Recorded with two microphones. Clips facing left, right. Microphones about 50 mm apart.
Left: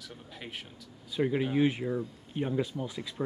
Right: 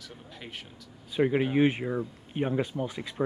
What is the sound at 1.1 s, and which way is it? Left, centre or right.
Speech, right.